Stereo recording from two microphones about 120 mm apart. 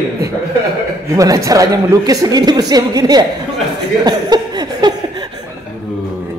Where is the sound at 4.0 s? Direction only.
35° right (ahead or behind).